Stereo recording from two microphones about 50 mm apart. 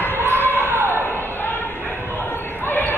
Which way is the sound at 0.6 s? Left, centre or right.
Right.